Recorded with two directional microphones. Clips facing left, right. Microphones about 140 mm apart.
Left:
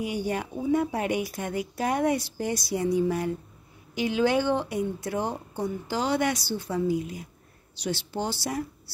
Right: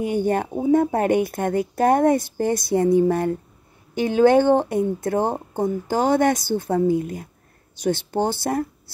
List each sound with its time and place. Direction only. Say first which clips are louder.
0.0 s speech: right 8 dB; 50° right (ahead or behind)